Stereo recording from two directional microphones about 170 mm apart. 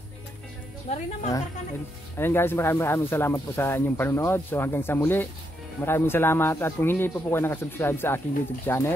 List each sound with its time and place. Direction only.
0.8 s speech: 40° left (ahead or behind)
2.1 s speech: 15° left (ahead or behind)